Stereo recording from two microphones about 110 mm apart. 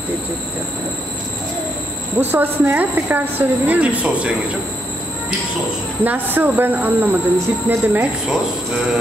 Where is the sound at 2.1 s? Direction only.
20° right (ahead or behind).